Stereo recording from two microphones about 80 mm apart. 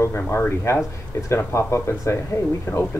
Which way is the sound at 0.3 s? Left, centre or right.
Left.